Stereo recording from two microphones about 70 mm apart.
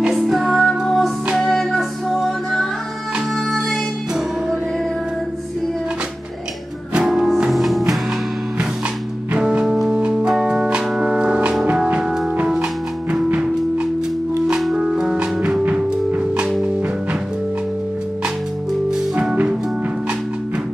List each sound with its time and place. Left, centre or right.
0.1 s music: centre
6.9 s music: centre
9.4 s music: centre
13.3 s music: centre
14.5 s music: centre
15.6 s music: right
16.3 s music: centre